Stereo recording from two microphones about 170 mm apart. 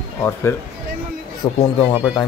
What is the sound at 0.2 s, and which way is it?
Speech, 15° left (ahead or behind).